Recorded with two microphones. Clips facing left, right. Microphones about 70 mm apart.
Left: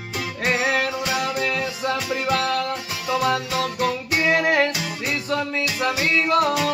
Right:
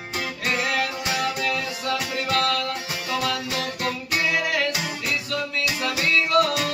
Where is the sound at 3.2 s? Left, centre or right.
Left.